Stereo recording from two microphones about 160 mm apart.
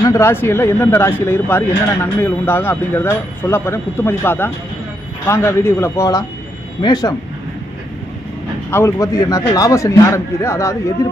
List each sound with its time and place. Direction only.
0.0 s speech: 15° left (ahead or behind)
8.6 s speech: 15° left (ahead or behind)